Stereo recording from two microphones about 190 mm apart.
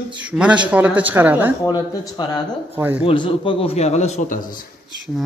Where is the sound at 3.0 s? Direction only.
25° left (ahead or behind).